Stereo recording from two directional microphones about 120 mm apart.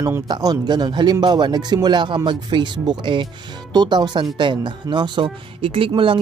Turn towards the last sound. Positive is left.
turn(degrees=-45)  # may be behind; listen again after turning